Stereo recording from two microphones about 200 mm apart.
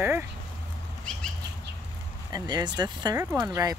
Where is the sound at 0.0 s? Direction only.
10° right (ahead or behind).